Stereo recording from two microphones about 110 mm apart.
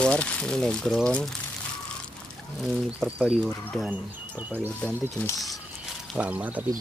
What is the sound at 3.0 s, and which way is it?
Speech, centre (ahead or behind).